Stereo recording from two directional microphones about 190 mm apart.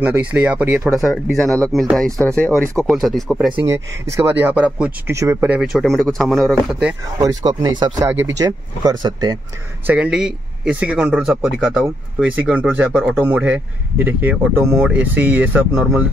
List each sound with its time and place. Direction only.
0.0 s a man's voice: 10° right (ahead or behind)
2.6 s a man's voice: 15° right (ahead or behind)
2.9 s speech: centre (ahead or behind)
7.2 s a man's voice: 20° right (ahead or behind)
9.8 s a man's voice: 5° right (ahead or behind)